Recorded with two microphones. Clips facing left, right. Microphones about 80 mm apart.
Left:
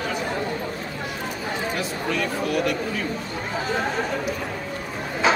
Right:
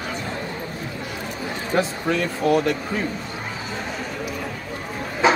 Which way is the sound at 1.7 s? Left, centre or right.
Right.